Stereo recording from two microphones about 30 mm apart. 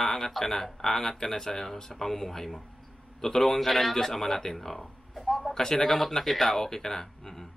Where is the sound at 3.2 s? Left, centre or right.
Centre.